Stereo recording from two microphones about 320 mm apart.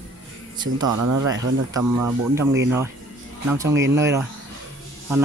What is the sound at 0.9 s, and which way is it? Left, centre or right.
Speech, right.